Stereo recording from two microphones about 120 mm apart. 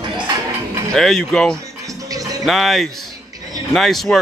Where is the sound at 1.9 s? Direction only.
30° right (ahead or behind).